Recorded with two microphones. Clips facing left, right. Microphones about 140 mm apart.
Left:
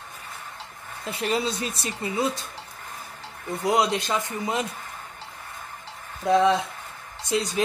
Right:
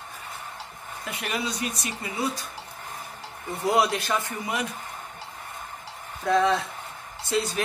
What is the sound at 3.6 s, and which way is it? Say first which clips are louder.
Speech: even; 20° left (ahead or behind).